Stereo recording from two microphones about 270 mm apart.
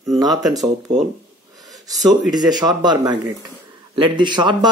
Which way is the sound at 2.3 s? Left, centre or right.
Centre.